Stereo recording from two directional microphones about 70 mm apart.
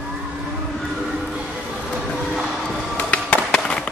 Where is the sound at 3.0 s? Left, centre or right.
Centre.